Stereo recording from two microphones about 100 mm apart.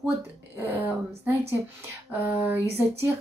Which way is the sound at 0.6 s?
20° right (ahead or behind).